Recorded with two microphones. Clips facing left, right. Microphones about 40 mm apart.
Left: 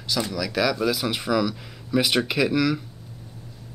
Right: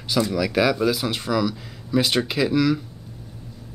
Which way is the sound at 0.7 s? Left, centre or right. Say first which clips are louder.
Right 2 dB; centre.